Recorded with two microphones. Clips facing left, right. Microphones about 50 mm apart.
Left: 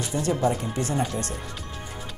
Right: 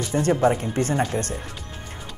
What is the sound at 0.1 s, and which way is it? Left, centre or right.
A man's voice, right.